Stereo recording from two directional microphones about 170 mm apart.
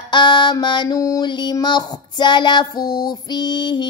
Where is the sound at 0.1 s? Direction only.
25° left (ahead or behind).